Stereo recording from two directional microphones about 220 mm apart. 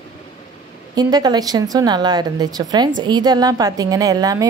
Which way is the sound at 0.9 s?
15° right (ahead or behind).